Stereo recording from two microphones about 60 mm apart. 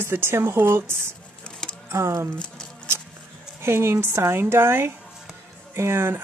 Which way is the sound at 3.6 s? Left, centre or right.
Right.